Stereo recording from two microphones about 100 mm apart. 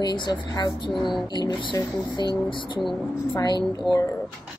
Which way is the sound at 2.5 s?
55° left (ahead or behind).